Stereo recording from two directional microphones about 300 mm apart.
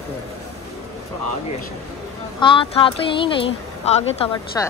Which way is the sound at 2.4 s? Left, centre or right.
Centre.